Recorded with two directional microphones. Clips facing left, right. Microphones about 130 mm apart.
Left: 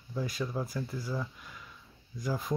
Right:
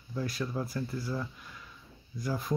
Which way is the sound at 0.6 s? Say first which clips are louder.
Right 1 dB; 15° left (ahead or behind).